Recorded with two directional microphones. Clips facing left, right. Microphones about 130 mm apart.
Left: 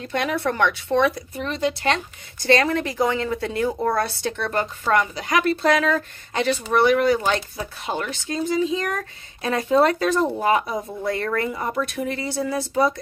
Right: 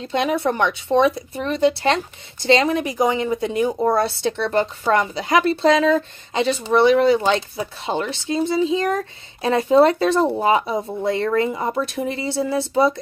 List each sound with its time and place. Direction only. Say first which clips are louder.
0.0 s a woman's voice: right 3 dB; 20° right (ahead or behind)
1.4 s speech: right 5 dB; 35° right (ahead or behind)
2.4 s a woman's voice: right 2 dB; 20° right (ahead or behind)